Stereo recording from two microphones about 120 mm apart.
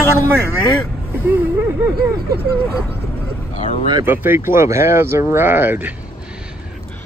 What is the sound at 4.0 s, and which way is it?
A man's voice, 15° right (ahead or behind).